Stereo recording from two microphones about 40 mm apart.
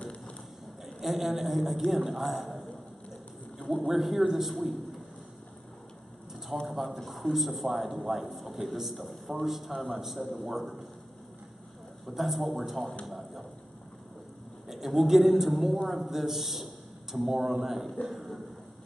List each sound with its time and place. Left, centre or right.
0.8 s a woman's voice: centre
3.5 s a sound: left
3.8 s a man's voice: centre
6.7 s a man's voice: centre
12.1 s a man's voice: centre
14.7 s a man's voice: centre